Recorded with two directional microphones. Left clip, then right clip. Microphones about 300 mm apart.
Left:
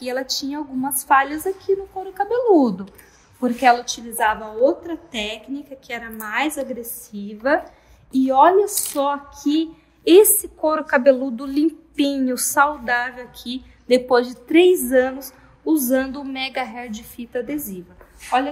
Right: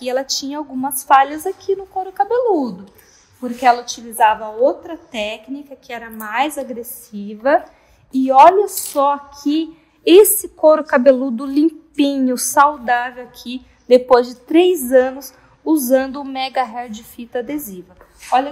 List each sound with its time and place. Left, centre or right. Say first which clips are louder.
0.0 s a woman's voice: right 4 dB; right